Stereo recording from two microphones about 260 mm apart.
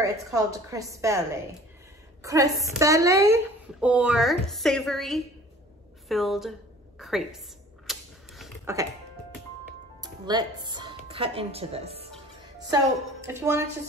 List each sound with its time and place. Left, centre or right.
0.0 s a woman's voice: centre
2.2 s a woman's voice: centre
7.8 s a sound: centre
10.0 s speech: centre
12.6 s a woman's voice: centre